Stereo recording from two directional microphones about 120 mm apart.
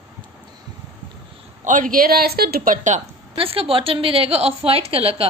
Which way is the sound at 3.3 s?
50° right (ahead or behind).